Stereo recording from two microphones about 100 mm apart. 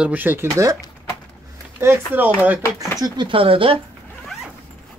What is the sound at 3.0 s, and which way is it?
Speech, 55° right (ahead or behind).